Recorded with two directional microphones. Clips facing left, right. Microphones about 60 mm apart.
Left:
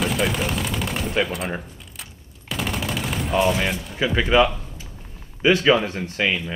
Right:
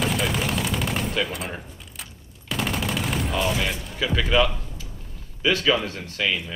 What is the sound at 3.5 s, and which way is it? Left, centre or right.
Speech, centre.